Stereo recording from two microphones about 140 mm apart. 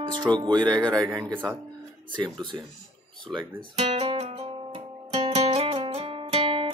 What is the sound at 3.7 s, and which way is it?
Music, 40° right (ahead or behind).